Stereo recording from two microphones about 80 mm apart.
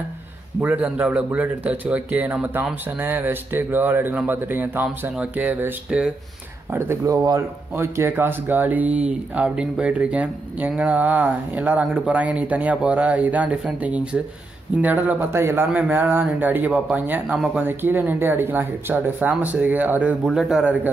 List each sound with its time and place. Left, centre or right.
0.6 s speech: right
5.9 s speech: centre
7.1 s speech: right
7.3 s speech: right
15.3 s a man's voice: right
15.7 s speech: right
20.3 s a man's voice: centre